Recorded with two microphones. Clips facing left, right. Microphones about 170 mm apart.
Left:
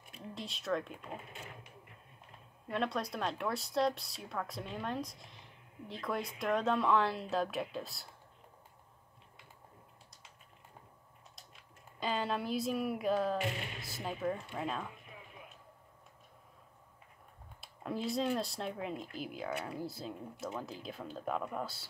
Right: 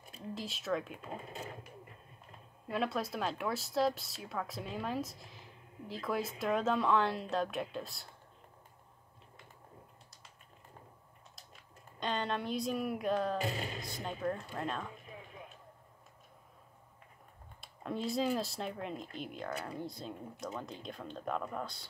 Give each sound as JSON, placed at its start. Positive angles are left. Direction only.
{"t": 0.3, "sound": "speech", "side_deg": 0}
{"t": 1.2, "sound": "speech", "side_deg": -35}
{"t": 2.7, "sound": "speech", "side_deg": -5}
{"t": 12.0, "sound": "speech", "side_deg": 5}
{"t": 13.4, "sound": "speech", "side_deg": -35}
{"t": 13.7, "sound": "speech", "side_deg": 5}
{"t": 17.6, "sound": "speech", "side_deg": 0}